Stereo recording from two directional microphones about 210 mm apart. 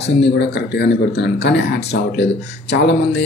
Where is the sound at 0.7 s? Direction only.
55° left (ahead or behind).